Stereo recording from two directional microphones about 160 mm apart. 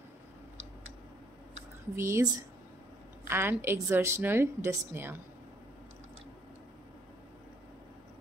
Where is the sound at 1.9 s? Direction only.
15° right (ahead or behind).